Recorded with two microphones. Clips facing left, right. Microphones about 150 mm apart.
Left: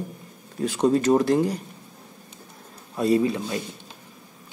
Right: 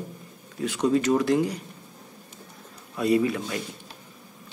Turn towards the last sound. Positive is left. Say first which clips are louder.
# left 2 dB
turn(degrees=30)  # may be behind; listen again after turning